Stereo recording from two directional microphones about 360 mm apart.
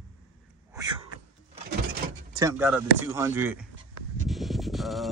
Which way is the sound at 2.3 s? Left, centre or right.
Centre.